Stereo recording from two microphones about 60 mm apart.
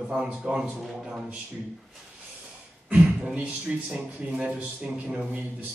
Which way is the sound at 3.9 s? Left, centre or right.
Centre.